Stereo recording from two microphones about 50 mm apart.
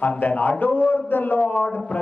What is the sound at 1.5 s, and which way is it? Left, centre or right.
Speech, left.